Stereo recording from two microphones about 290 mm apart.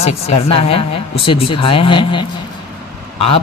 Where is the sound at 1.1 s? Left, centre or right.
Centre.